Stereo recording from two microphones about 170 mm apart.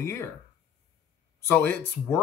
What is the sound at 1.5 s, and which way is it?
Speech, 10° left (ahead or behind).